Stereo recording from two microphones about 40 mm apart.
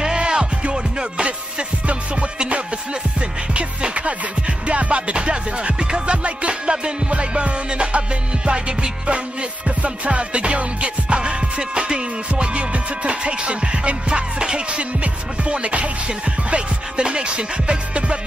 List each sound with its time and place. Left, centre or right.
0.0 s music: right